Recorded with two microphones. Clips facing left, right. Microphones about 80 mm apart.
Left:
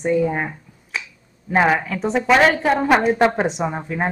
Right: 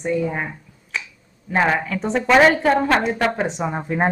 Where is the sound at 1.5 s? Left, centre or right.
Centre.